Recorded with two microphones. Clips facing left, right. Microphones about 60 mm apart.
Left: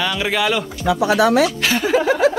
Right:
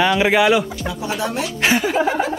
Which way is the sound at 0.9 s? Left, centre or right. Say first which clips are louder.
Left 13 dB; left.